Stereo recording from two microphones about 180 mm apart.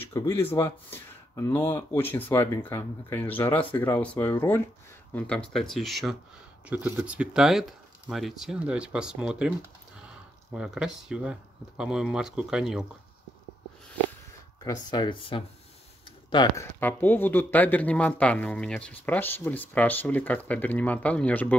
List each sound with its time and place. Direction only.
0.0 s speech: 10° left (ahead or behind); by 9.5 s 5° right (ahead or behind)
10.5 s speech: 5° right (ahead or behind)
14.6 s speech: 20° left (ahead or behind)
16.8 s speech: 10° left (ahead or behind)